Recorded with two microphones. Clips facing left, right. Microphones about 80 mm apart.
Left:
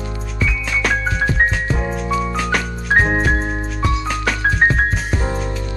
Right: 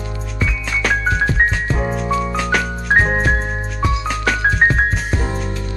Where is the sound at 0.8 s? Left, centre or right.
Centre.